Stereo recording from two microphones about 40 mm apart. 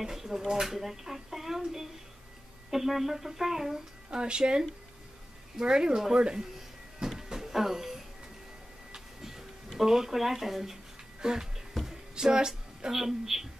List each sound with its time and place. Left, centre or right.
0.0 s speech: centre
4.1 s speech: right
7.1 s music: centre
8.9 s a sound: centre
11.1 s speech: centre
11.8 s a sound: centre
12.9 s speech: centre